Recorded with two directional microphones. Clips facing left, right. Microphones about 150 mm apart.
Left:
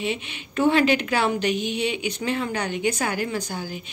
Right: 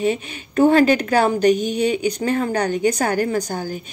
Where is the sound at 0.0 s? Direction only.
45° right (ahead or behind).